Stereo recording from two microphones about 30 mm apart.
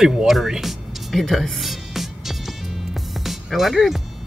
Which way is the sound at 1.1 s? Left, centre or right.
Centre.